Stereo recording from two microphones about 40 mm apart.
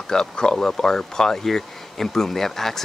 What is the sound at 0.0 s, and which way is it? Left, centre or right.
Speech, centre.